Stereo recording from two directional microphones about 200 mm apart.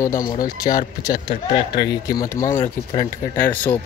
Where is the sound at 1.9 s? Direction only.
20° left (ahead or behind).